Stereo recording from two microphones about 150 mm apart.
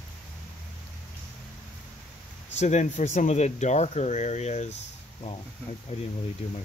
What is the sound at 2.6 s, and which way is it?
Speech, 50° left (ahead or behind).